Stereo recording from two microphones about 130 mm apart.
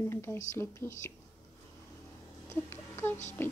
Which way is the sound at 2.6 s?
15° left (ahead or behind).